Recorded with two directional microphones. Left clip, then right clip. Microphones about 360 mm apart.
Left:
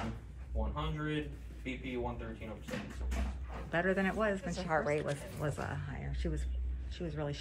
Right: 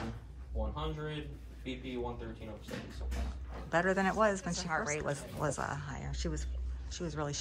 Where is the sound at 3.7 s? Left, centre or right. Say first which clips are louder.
Right 2 dB; centre.